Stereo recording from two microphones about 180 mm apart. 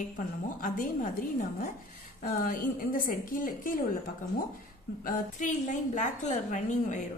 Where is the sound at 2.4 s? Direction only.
50° left (ahead or behind).